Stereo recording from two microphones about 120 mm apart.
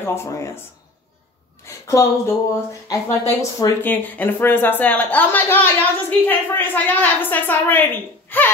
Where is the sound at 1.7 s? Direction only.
25° left (ahead or behind).